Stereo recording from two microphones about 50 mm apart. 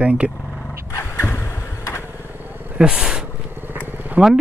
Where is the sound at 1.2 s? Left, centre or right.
Left.